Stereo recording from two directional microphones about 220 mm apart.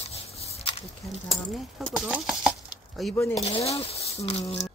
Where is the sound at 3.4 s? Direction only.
25° left (ahead or behind).